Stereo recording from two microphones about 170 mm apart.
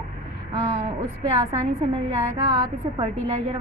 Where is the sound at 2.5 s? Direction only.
30° right (ahead or behind).